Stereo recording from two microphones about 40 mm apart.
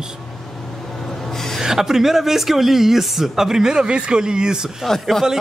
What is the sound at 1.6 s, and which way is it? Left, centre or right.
A woman's voice, centre.